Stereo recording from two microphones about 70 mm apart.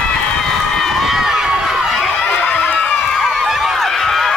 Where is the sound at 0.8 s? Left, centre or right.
Centre.